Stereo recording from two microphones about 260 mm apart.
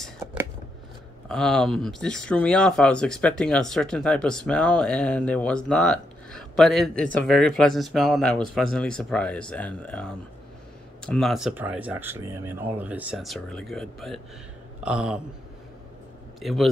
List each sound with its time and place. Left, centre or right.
0.0 s a sound: centre
1.3 s speech: centre
16.3 s a man's voice: centre